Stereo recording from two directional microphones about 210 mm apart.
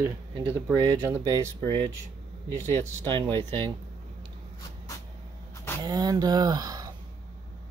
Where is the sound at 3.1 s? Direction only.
25° right (ahead or behind).